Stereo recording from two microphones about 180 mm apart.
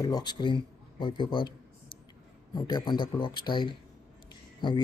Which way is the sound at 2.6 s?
25° left (ahead or behind).